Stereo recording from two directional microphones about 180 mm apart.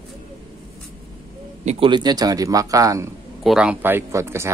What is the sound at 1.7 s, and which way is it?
Speech, 30° right (ahead or behind).